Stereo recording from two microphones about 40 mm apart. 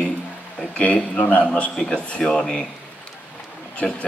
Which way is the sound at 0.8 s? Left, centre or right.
Left.